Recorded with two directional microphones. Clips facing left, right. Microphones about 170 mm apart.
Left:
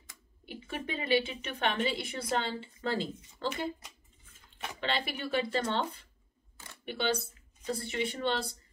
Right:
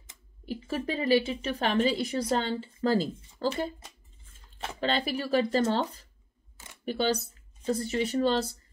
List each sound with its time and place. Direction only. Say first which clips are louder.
0.5 s a woman's voice: right 7 dB; 35° right (ahead or behind)